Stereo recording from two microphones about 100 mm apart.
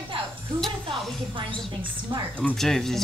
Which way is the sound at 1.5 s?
55° right (ahead or behind).